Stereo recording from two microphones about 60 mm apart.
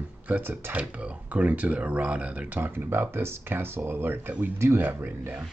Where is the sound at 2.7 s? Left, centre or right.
Right.